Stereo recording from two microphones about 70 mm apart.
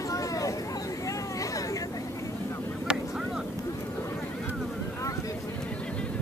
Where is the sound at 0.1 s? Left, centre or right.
Left.